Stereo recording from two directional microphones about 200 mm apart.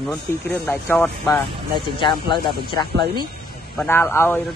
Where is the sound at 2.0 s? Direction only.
25° left (ahead or behind).